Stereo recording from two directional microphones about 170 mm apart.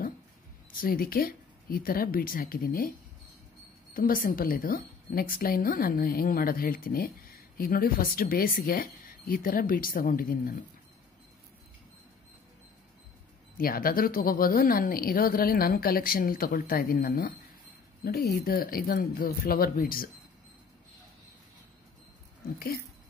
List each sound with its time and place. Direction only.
0.7 s a woman's voice: 55° left (ahead or behind)
3.9 s a woman's voice: 55° left (ahead or behind)
13.6 s a woman's voice: 55° left (ahead or behind)
18.3 s a woman's voice: 60° left (ahead or behind)